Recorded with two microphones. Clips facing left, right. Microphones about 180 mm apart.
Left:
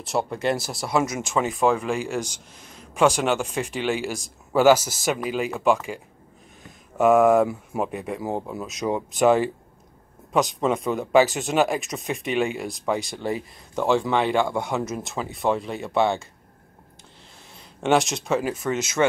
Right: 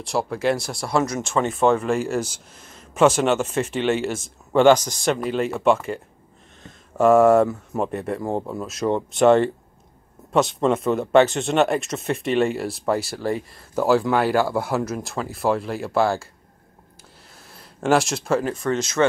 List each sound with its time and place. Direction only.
0.0 s speech: centre (ahead or behind)
7.0 s speech: centre (ahead or behind)
17.8 s speech: centre (ahead or behind)